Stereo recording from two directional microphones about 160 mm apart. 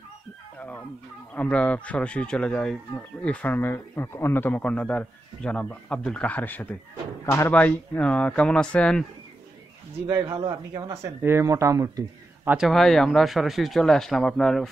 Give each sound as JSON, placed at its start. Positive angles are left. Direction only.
{"t": 1.3, "sound": "speech", "side_deg": 10}
{"t": 10.0, "sound": "speech", "side_deg": -15}
{"t": 12.4, "sound": "speech", "side_deg": 0}